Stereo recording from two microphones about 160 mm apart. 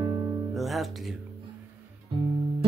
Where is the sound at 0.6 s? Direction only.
Centre (ahead or behind).